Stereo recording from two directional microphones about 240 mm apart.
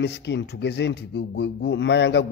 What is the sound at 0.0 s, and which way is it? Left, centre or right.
Speech, left.